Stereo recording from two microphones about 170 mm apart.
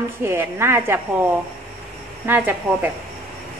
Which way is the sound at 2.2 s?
10° right (ahead or behind).